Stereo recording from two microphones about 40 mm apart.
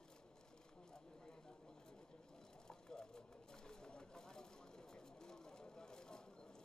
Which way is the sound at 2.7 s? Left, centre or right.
Centre.